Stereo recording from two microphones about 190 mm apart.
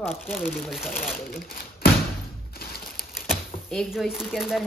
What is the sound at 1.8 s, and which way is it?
Thump, 55° left (ahead or behind).